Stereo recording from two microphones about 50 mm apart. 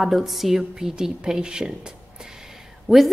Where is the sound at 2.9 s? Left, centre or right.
Right.